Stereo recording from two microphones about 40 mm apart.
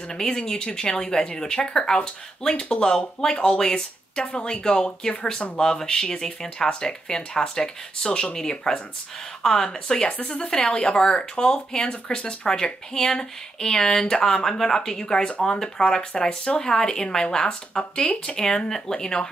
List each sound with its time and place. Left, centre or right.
0.1 s speech: centre
10.5 s speech: centre